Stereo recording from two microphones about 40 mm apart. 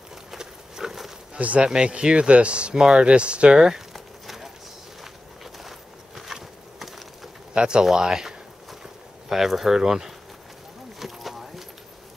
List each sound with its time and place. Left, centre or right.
0.1 s horse: centre
1.6 s speech: right
2.7 s speech: centre
3.9 s a sound: centre
5.0 s walk: centre
7.5 s speech: right
11.0 s clip-clop: centre